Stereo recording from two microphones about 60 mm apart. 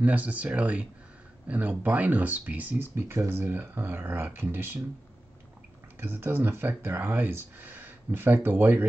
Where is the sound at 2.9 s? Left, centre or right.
Right.